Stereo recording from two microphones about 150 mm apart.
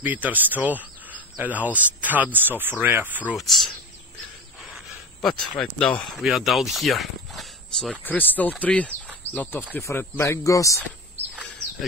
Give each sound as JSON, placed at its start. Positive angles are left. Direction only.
{"t": 0.0, "sound": "speech", "side_deg": -10}
{"t": 4.7, "sound": "speech", "side_deg": 5}
{"t": 8.0, "sound": "speech", "side_deg": 10}